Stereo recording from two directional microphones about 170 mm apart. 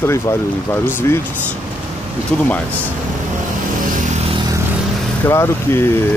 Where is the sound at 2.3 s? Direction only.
10° left (ahead or behind).